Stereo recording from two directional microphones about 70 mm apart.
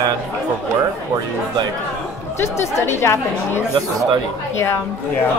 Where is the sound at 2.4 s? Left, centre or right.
Left.